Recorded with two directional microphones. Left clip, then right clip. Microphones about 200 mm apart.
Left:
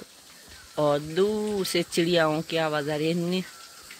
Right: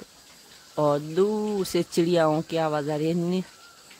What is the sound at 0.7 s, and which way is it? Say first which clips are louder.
Speech: right 1 dB; 25° right (ahead or behind).